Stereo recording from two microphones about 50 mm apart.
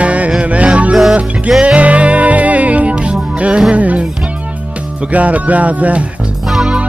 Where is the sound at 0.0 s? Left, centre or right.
Right.